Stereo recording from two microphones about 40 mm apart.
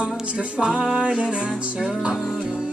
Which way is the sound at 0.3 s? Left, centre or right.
Right.